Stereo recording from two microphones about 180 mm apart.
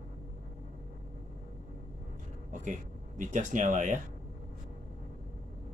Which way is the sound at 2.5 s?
45° right (ahead or behind).